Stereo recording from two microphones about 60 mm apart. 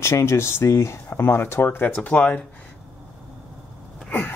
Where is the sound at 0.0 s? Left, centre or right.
Left.